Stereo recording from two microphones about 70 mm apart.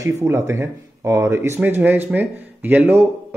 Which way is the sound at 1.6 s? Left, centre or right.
Right.